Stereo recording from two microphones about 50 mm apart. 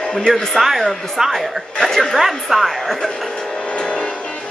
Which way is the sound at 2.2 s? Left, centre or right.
Centre.